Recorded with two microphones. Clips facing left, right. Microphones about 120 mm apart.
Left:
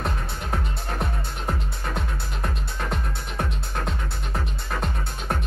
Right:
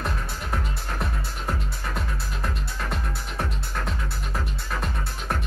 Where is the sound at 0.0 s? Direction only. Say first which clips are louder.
Left 1 dB; 25° left (ahead or behind).